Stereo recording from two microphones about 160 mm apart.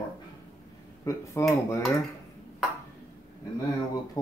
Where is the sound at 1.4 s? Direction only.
15° left (ahead or behind).